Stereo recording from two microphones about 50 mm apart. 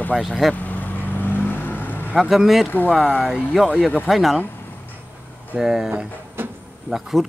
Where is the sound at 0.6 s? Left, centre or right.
Left.